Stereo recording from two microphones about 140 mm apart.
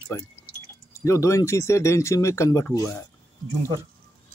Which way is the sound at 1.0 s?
20° left (ahead or behind).